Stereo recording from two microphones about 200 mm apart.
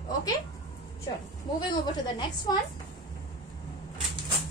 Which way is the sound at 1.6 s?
20° left (ahead or behind).